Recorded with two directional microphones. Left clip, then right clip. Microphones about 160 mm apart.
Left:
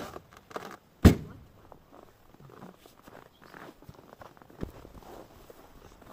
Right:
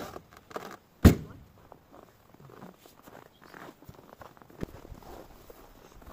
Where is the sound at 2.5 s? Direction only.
10° right (ahead or behind).